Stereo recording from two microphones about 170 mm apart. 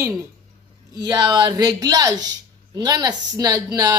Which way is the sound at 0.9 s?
25° right (ahead or behind).